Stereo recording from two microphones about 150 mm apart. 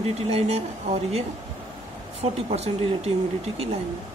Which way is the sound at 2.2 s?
45° right (ahead or behind).